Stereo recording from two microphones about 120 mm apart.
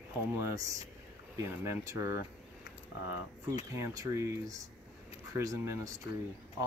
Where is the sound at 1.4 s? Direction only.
25° right (ahead or behind).